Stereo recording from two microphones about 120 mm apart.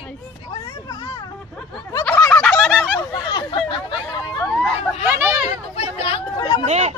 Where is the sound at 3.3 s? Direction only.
45° left (ahead or behind).